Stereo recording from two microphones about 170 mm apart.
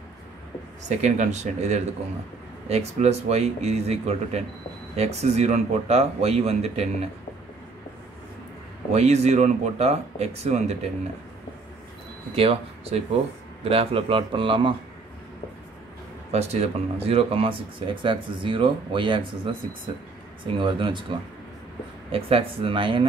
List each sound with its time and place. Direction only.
0.8 s speech: 45° right (ahead or behind)
8.9 s speech: 40° right (ahead or behind)
12.4 s speech: 35° right (ahead or behind)
16.3 s speech: 40° right (ahead or behind)
20.5 s speech: 30° right (ahead or behind)
22.1 s speech: 35° right (ahead or behind)